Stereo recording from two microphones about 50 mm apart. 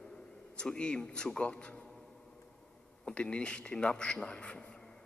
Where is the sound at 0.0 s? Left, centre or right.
Centre.